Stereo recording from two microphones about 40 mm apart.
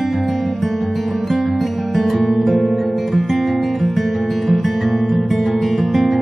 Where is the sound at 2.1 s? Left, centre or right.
Centre.